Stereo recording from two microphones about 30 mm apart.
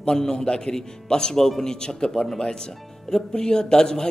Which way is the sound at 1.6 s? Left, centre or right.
Left.